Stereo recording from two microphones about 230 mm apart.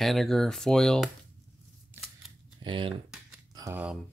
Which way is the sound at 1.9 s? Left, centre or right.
Centre.